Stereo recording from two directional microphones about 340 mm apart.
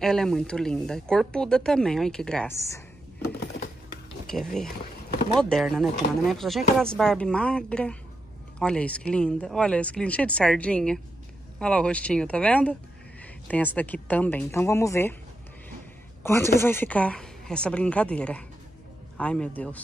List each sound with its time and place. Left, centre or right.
0.0 s speech: centre
3.3 s computer keyboard: left
4.3 s speech: centre
16.2 s speech: centre